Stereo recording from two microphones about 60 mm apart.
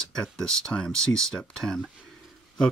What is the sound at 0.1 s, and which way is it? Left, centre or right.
Speech, centre.